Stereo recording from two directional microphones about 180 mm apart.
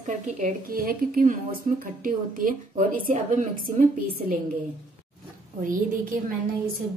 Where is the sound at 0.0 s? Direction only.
45° right (ahead or behind).